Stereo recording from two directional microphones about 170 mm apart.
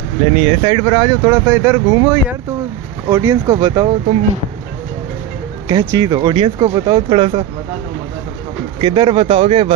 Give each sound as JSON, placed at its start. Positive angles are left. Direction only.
{"t": 0.2, "sound": "speech", "side_deg": -40}
{"t": 5.7, "sound": "speech", "side_deg": -20}
{"t": 8.8, "sound": "speech", "side_deg": -30}